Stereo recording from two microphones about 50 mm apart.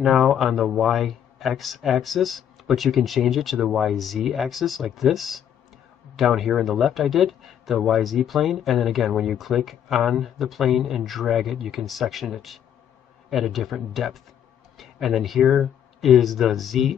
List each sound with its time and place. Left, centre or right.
0.0 s a man's voice: centre